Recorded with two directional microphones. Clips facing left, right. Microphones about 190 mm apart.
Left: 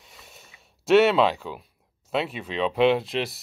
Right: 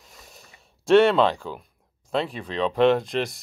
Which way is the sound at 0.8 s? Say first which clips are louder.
Right 1 dB; 5° left (ahead or behind).